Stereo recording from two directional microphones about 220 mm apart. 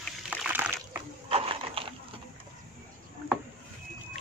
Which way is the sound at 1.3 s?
25° right (ahead or behind).